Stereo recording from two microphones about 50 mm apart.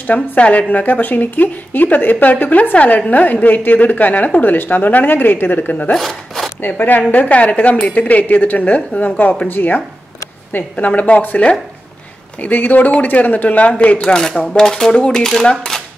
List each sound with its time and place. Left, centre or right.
0.0 s a woman's voice: left
5.9 s a sound: centre
6.6 s a woman's voice: left
10.9 s a woman's voice: left
14.0 s speech: centre
15.7 s cap gun: centre